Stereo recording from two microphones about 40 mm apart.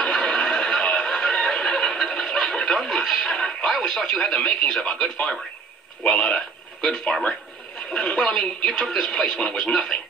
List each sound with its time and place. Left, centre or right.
0.0 s music: left
3.8 s speech: centre
6.0 s speech: left
9.7 s speech: centre